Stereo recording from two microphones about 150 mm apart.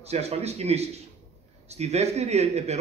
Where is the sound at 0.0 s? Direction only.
45° right (ahead or behind).